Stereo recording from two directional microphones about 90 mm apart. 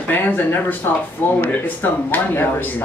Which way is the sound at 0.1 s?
20° left (ahead or behind).